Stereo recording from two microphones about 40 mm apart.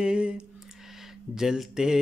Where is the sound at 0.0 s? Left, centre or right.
Right.